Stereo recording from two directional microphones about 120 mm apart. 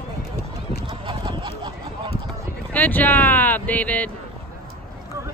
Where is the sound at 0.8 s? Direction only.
40° right (ahead or behind).